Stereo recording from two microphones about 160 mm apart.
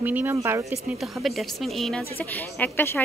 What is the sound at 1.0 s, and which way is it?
A woman's voice, centre (ahead or behind).